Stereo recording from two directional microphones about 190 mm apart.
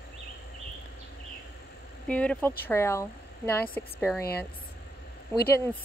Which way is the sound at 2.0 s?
5° left (ahead or behind).